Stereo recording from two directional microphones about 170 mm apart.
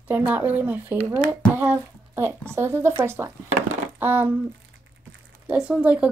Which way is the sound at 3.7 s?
10° right (ahead or behind).